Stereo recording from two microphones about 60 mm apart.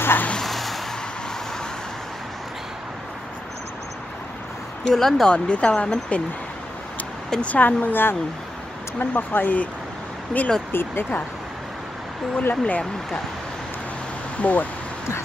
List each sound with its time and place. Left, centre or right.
0.0 s vehicle: left
0.4 s a sound: centre
4.9 s speech: centre
5.3 s speech: left
7.2 s speech: centre
10.7 s speech: left
12.4 s speech: left
14.4 s speech: left